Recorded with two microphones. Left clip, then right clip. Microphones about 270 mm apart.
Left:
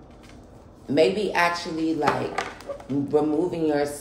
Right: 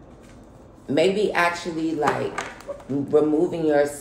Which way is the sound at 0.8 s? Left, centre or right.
Right.